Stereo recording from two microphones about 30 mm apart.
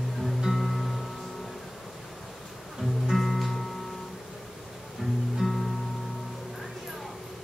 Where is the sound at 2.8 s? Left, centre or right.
Centre.